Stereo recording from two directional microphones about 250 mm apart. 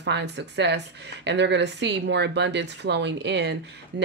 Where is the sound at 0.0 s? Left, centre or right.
Right.